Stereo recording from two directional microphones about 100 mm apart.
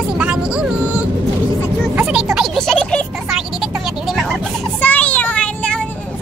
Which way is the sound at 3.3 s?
Centre (ahead or behind).